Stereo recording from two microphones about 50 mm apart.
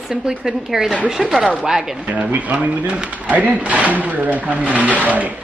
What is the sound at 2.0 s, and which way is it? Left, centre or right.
Speech, right.